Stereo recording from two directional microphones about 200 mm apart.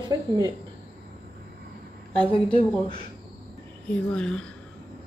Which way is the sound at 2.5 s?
25° left (ahead or behind).